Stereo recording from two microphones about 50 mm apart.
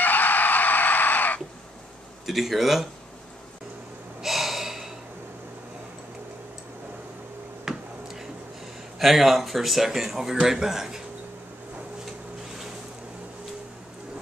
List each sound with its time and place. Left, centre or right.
0.0 s screaming: left
2.2 s speech: centre
4.2 s gasp: centre
7.6 s a sound: centre
9.0 s speech: centre